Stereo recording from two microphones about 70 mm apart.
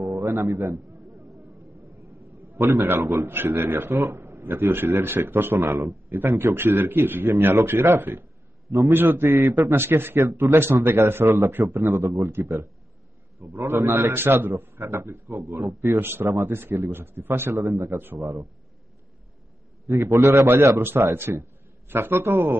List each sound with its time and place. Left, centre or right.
0.0 s a man's voice: right
3.0 s a man's voice: right
3.3 s speech: right
5.6 s a man's voice: right
6.0 s speech: right
9.8 s a man's voice: right
12.2 s speech: right
13.6 s a man's voice: right
16.0 s a man's voice: right
17.9 s a man's voice: right
18.2 s a man's voice: right
20.0 s a man's voice: right
20.8 s a man's voice: right